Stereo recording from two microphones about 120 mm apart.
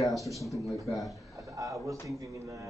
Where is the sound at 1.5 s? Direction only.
25° right (ahead or behind).